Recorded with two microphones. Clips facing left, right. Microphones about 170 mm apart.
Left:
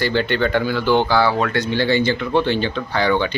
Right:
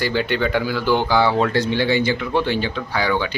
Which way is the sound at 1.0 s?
20° right (ahead or behind).